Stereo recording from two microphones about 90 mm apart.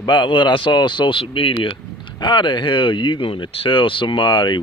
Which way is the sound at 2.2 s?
60° left (ahead or behind).